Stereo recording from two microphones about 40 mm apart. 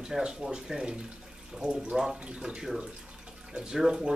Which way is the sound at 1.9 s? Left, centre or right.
Centre.